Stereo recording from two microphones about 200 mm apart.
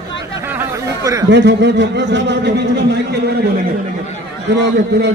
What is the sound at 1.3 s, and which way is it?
Speech, 60° right (ahead or behind).